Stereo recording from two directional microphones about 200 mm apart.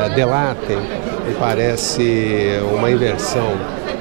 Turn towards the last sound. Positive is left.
turn(degrees=-15)  # may be behind; listen again after turning